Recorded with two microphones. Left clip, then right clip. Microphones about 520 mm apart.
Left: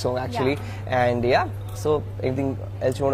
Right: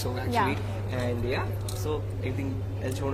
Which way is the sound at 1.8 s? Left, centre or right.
Left.